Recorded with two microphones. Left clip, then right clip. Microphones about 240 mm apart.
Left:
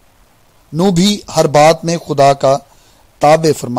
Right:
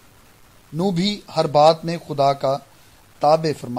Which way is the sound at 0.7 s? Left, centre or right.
Left.